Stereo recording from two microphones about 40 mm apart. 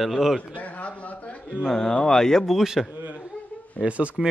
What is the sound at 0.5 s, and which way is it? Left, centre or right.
Speech, left.